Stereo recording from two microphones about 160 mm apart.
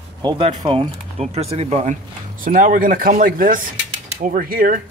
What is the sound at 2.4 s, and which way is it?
Speech, 55° right (ahead or behind).